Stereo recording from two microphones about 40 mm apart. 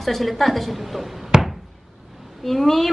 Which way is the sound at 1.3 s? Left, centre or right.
Centre.